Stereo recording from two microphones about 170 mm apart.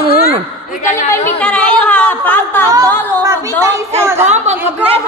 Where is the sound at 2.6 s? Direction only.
20° right (ahead or behind).